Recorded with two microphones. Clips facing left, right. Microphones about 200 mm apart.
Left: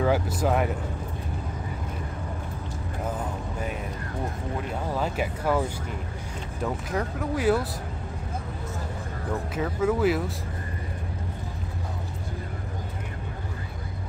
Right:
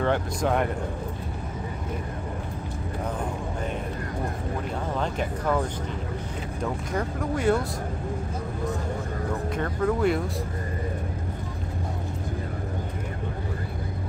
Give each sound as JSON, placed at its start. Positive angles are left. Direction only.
{"t": 0.0, "sound": "speech", "side_deg": 5}
{"t": 4.9, "sound": "speech", "side_deg": 5}
{"t": 9.6, "sound": "speech", "side_deg": 5}